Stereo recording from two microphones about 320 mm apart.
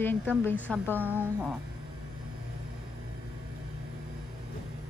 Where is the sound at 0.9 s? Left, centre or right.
Centre.